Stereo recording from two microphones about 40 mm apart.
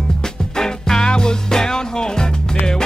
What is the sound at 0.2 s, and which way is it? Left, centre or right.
Music, centre.